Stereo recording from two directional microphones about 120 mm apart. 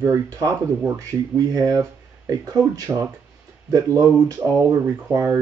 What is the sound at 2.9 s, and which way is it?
Speech, 20° right (ahead or behind).